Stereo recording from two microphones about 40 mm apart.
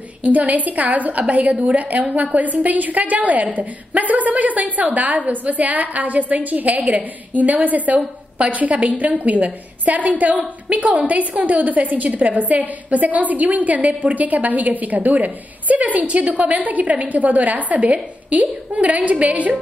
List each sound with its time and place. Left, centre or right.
0.2 s a woman's voice: right